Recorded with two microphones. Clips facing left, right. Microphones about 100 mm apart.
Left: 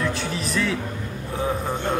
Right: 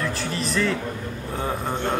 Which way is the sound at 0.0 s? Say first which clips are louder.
Left 1 dB; centre (ahead or behind).